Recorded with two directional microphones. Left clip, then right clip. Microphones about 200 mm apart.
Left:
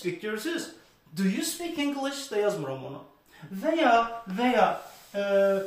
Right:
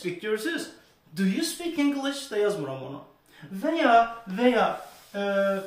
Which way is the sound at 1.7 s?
20° right (ahead or behind).